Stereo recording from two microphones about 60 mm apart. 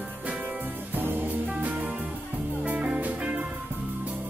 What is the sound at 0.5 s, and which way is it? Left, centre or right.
Music, right.